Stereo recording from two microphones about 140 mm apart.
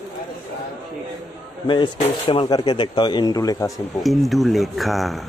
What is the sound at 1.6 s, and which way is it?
Speech, 35° left (ahead or behind).